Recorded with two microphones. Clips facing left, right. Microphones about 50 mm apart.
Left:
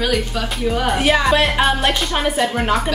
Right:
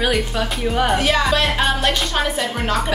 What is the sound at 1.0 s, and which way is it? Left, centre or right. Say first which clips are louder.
A woman's voice: left 2 dB; centre.